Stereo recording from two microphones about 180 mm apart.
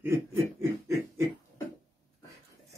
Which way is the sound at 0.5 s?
15° right (ahead or behind).